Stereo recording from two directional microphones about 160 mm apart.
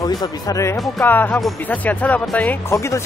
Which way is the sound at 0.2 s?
20° left (ahead or behind).